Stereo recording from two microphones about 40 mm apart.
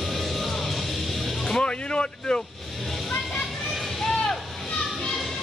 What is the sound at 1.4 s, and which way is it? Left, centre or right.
Vehicle, left.